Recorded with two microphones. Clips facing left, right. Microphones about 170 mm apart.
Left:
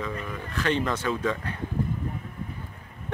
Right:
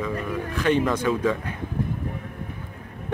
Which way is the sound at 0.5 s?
15° right (ahead or behind).